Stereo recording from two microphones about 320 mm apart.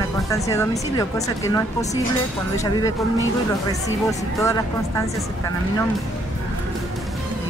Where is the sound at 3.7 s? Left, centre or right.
Centre.